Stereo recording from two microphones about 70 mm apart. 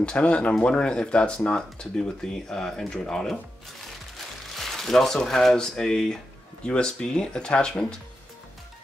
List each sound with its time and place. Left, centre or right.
0.0 s speech: centre
4.6 s speech: centre